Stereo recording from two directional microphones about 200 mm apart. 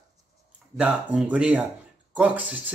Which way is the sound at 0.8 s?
5° right (ahead or behind).